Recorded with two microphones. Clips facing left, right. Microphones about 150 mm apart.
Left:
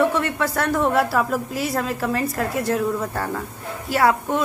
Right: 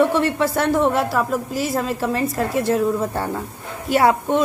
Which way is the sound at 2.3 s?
25° right (ahead or behind).